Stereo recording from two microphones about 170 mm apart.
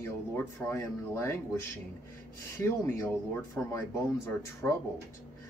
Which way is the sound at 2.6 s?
15° left (ahead or behind).